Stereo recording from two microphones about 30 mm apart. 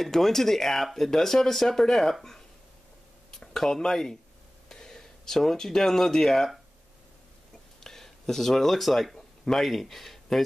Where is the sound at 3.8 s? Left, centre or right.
Centre.